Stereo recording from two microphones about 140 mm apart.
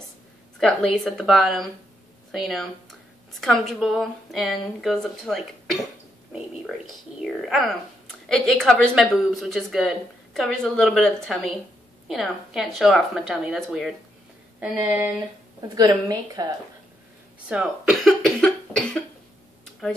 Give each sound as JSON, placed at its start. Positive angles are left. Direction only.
{"t": 0.6, "sound": "speech", "side_deg": 5}
{"t": 6.6, "sound": "a sound", "side_deg": 0}
{"t": 8.3, "sound": "speech", "side_deg": 5}
{"t": 15.7, "sound": "a woman's voice", "side_deg": -30}
{"t": 17.5, "sound": "cough", "side_deg": -5}